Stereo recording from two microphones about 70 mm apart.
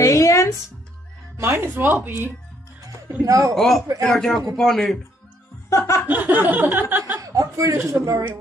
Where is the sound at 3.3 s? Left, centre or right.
Right.